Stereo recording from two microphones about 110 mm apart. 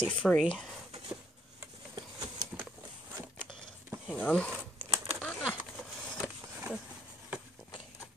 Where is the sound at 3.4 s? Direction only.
45° left (ahead or behind).